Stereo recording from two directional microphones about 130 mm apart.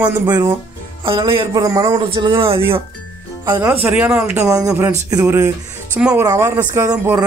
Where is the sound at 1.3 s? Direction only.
35° right (ahead or behind).